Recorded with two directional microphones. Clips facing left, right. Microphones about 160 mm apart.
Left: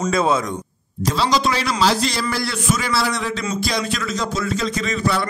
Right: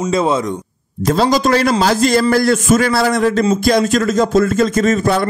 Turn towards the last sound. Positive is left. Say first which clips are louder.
# right 8 dB
turn(degrees=-50)  # may be behind; listen again after turning